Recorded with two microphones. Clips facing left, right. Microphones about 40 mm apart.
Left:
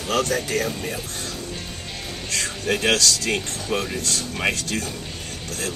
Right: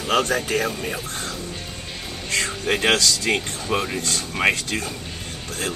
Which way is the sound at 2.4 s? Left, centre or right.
Right.